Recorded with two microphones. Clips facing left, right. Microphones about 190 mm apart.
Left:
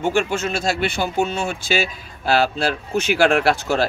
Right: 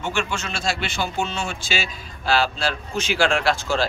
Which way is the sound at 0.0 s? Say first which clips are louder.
Left 7 dB; 50° left (ahead or behind).